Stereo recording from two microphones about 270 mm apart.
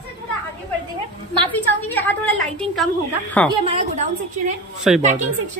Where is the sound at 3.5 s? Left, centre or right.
Right.